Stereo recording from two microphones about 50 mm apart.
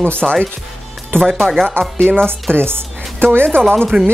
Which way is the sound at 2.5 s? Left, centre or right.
Right.